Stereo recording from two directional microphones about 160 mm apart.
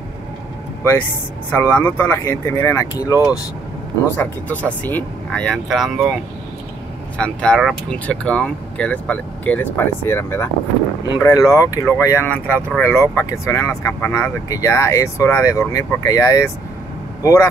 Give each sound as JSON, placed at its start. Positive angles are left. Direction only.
{"t": 1.5, "sound": "speech", "side_deg": 10}
{"t": 4.2, "sound": "speech", "side_deg": 10}
{"t": 7.2, "sound": "speech", "side_deg": 5}